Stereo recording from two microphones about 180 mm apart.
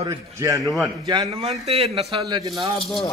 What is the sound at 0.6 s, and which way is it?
Speech, centre (ahead or behind).